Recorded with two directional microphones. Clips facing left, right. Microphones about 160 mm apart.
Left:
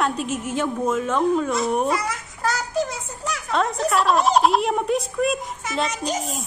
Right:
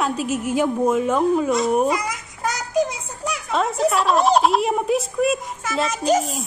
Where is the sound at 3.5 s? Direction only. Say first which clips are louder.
Right 2 dB; centre (ahead or behind).